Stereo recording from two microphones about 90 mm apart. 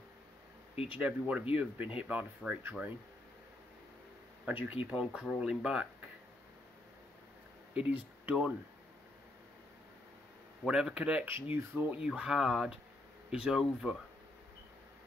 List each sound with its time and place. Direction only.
0.8 s speech: 15° right (ahead or behind)
4.5 s speech: 15° right (ahead or behind)
7.7 s speech: 15° right (ahead or behind)
10.6 s speech: 5° right (ahead or behind)
11.5 s speech: 25° right (ahead or behind)
12.0 s speech: 10° right (ahead or behind)